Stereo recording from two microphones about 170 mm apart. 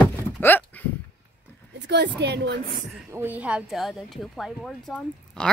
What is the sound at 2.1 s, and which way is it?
Speech, 80° right.